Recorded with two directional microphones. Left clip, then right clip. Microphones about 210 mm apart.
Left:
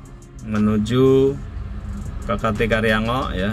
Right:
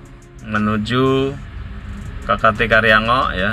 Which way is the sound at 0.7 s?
20° left (ahead or behind).